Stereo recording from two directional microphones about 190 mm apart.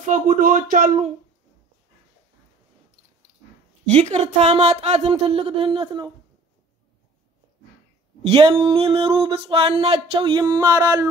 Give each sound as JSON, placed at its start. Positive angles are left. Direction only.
{"t": 0.0, "sound": "speech", "side_deg": -40}
{"t": 3.8, "sound": "speech", "side_deg": -35}
{"t": 8.2, "sound": "a sound", "side_deg": -30}